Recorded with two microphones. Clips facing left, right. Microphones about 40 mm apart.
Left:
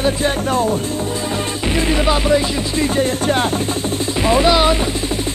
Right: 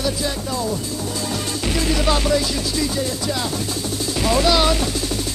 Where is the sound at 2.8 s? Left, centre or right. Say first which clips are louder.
Left 9 dB; left.